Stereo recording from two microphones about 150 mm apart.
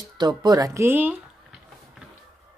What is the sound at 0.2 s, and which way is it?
Speech, 25° right (ahead or behind).